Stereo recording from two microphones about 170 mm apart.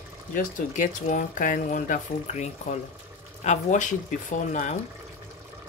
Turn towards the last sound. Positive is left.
turn(degrees=45)  # may be behind; listen again after turning